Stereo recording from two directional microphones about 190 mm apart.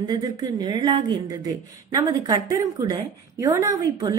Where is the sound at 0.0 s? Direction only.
20° right (ahead or behind).